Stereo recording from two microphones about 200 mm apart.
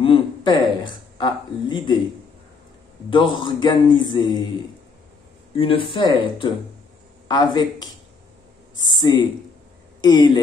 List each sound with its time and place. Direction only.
0.0 s a sound: 25° left (ahead or behind)
3.1 s a man's voice: 25° left (ahead or behind)
5.6 s a man's voice: 25° left (ahead or behind)